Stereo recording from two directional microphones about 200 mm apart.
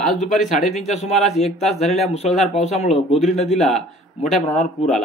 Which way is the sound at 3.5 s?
Centre (ahead or behind).